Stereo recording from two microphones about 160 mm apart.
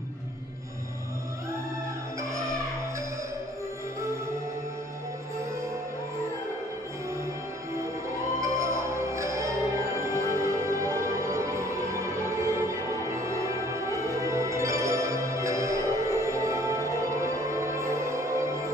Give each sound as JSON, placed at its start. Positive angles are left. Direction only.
{"t": 8.4, "sound": "music", "side_deg": -20}